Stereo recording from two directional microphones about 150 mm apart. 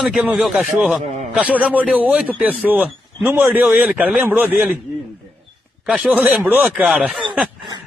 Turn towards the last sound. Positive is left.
turn(degrees=-5)  # may be behind; listen again after turning